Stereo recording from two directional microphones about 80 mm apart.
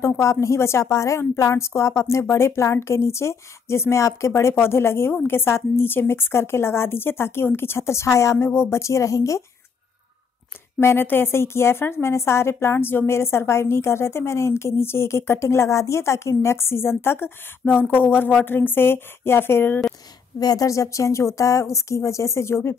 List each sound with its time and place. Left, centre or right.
0.0 s a woman's voice: left
10.8 s a woman's voice: left
20.3 s a woman's voice: left